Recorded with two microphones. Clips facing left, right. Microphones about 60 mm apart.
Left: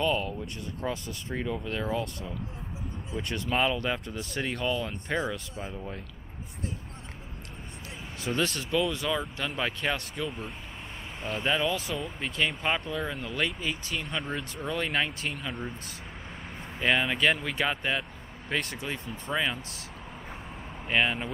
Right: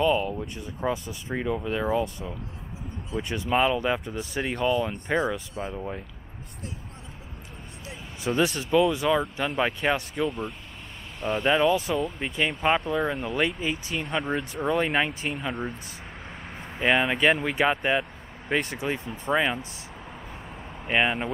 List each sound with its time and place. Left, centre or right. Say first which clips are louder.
0.0 s speech: right 5 dB; centre
8.2 s speech: right 5 dB; centre
16.7 s speech: right 3 dB; centre
20.8 s speech: right 3 dB; centre